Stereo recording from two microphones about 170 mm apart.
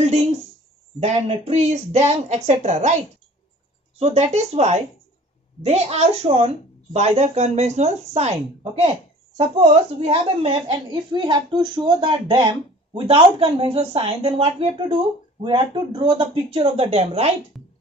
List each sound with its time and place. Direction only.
0.9 s a woman's voice: 40° right (ahead or behind)
4.0 s a woman's voice: 40° right (ahead or behind)